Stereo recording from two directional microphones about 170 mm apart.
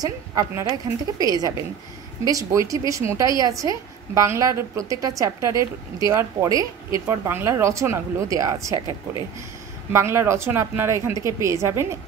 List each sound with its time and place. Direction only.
0.0 s a woman's voice: 20° right (ahead or behind)
9.9 s a woman's voice: 15° right (ahead or behind)